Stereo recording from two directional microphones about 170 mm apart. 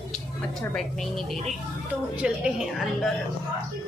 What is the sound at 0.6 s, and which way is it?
Speech, centre (ahead or behind).